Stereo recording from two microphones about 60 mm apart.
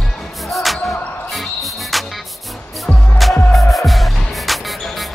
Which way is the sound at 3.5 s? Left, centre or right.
Centre.